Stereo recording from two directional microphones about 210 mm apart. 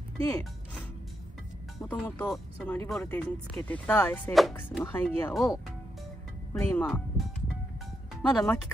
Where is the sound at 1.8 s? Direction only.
5° left (ahead or behind).